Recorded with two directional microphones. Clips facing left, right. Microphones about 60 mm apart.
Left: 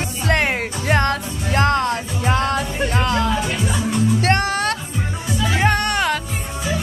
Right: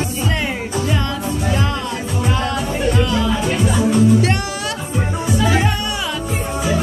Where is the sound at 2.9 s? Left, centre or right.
Left.